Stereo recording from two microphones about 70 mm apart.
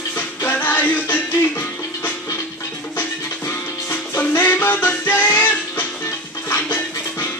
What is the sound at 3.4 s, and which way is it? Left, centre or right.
Music, left.